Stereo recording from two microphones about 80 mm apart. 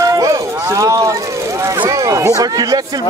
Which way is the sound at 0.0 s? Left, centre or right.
Right.